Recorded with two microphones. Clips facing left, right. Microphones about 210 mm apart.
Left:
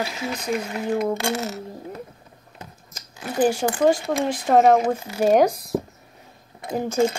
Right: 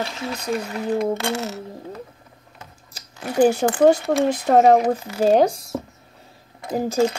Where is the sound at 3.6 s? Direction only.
55° right (ahead or behind).